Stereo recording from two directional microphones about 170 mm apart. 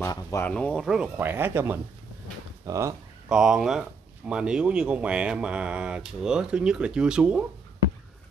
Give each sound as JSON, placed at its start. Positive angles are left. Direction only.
{"t": 0.0, "sound": "speech", "side_deg": 15}
{"t": 0.5, "sound": "speech", "side_deg": 5}
{"t": 3.3, "sound": "speech", "side_deg": -5}